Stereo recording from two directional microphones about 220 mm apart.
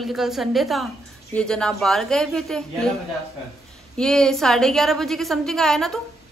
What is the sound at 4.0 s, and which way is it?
Speech, centre (ahead or behind).